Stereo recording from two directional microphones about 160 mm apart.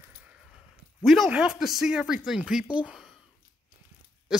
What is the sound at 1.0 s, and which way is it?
Speech, centre (ahead or behind).